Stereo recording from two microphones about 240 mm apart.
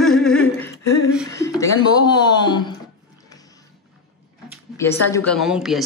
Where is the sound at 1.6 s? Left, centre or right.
Centre.